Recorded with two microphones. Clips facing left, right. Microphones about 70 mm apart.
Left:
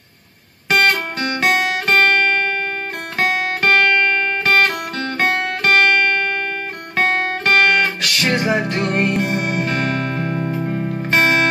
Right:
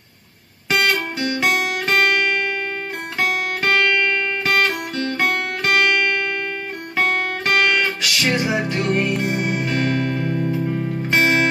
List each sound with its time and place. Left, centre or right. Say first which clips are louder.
0.7 s guitar: left 3 dB; left
3.2 s music: left 3 dB; left